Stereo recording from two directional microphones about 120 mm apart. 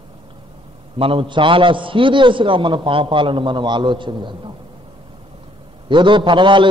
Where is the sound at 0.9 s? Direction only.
50° right (ahead or behind).